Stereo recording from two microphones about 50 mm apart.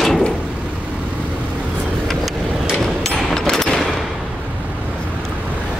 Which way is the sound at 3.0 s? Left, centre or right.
Centre.